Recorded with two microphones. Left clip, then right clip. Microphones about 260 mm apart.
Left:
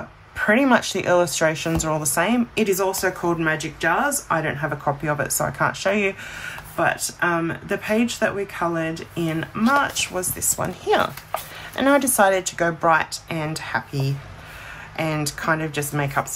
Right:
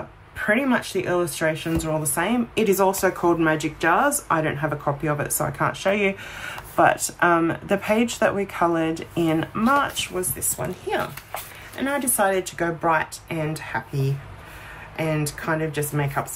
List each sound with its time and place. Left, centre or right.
0.4 s speech: centre
10.1 s a woman's voice: centre
15.0 s a woman's voice: centre